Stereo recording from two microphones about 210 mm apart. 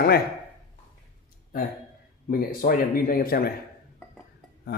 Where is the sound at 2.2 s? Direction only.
45° left (ahead or behind).